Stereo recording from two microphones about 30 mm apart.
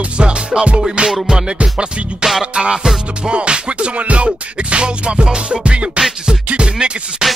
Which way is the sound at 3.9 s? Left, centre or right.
Right.